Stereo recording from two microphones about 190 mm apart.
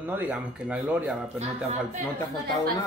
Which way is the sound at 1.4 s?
35° right (ahead or behind).